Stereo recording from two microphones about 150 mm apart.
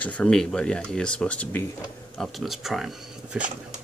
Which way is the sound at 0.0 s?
5° left (ahead or behind).